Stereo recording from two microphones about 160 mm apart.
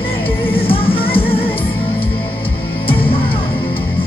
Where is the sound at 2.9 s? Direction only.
35° left (ahead or behind).